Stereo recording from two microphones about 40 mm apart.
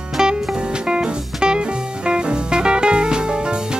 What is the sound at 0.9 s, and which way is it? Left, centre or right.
Music, right.